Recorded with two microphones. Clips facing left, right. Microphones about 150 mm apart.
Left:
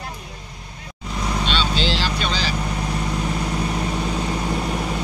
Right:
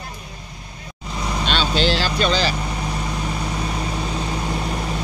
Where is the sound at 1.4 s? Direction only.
50° right (ahead or behind).